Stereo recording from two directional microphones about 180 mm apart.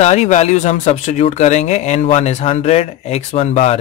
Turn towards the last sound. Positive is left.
turn(degrees=35)  # may be behind; listen again after turning